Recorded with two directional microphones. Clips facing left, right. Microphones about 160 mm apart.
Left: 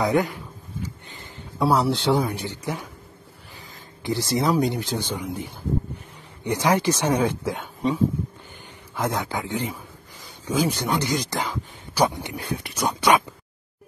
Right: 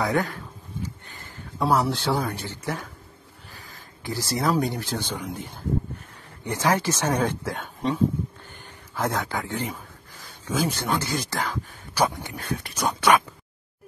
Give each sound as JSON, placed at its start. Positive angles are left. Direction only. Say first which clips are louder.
{"t": 0.0, "sound": "a man's voice", "louder": "left 3 dB", "side_deg": 20}
{"t": 1.6, "sound": "a man's voice", "louder": "left 2 dB", "side_deg": 15}
{"t": 4.0, "sound": "a man's voice", "louder": "left 3 dB", "side_deg": 20}